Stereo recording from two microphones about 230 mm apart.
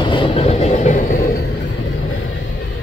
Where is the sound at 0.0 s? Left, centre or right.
Left.